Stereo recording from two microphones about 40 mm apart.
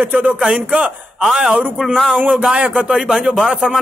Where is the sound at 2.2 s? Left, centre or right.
Right.